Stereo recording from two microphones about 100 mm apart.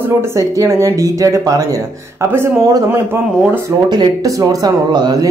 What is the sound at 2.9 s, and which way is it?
Speech, 25° right (ahead or behind).